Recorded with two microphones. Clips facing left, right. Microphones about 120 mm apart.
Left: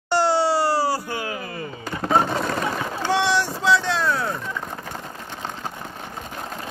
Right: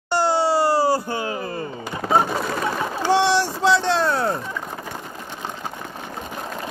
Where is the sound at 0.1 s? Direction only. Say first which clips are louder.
Even; 15° right (ahead or behind); by 1.7 s 35° right (ahead or behind).